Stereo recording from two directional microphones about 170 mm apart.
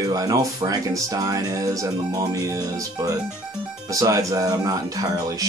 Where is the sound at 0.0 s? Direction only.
20° right (ahead or behind).